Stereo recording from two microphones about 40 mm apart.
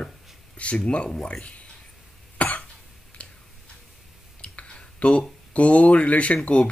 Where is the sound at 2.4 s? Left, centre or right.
Left.